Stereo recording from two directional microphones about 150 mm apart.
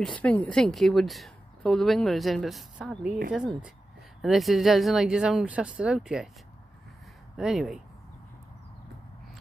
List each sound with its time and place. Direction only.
0.0 s a woman's voice: 10° left (ahead or behind)
7.3 s a woman's voice: 5° right (ahead or behind)